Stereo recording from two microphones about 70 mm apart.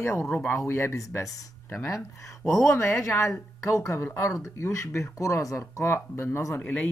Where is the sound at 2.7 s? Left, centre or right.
Left.